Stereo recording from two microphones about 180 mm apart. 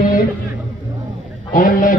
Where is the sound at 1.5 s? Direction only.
50° left (ahead or behind).